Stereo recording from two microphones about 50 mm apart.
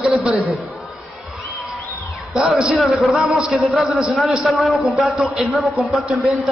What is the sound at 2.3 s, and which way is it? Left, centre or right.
A man's voice, centre.